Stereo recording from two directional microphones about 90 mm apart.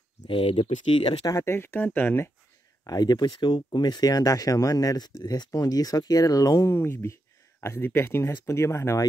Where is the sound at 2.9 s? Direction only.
50° left (ahead or behind).